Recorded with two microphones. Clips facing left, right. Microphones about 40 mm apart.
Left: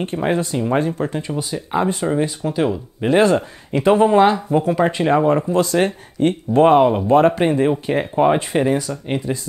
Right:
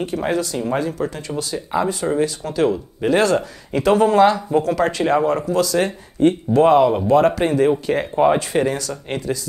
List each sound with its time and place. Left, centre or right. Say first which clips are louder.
0.2 s speech: left 4 dB; left
2.4 s speech: right 1 dB; centre; by 6.9 s left
7.2 s speech: even; left